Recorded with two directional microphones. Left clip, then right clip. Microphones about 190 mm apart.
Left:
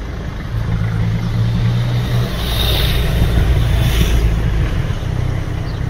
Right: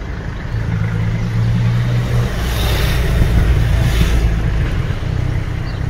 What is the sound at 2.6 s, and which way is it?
Vehicle, 15° right (ahead or behind).